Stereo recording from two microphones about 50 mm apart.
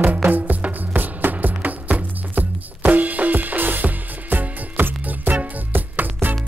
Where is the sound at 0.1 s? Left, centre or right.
Right.